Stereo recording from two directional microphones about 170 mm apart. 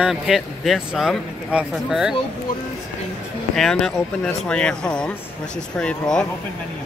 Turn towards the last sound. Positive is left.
turn(degrees=5)  # may be behind; listen again after turning